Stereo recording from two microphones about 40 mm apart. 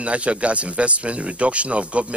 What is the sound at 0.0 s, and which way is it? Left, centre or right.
Speech, right.